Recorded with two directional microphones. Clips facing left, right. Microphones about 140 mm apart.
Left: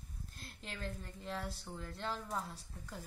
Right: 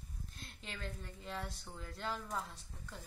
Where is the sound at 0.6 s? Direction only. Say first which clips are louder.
Left 2 dB; centre (ahead or behind).